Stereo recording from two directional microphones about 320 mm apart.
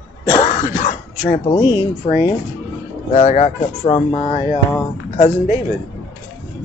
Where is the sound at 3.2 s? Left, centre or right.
Left.